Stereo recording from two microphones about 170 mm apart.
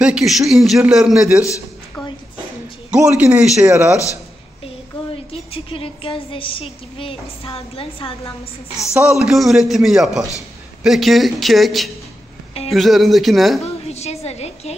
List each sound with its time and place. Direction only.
0.0 s a man's voice: 5° right (ahead or behind)
2.9 s a man's voice: 10° right (ahead or behind)
5.1 s a woman's voice: 35° left (ahead or behind)
8.9 s a man's voice: 5° right (ahead or behind)
13.8 s a sound: 40° left (ahead or behind)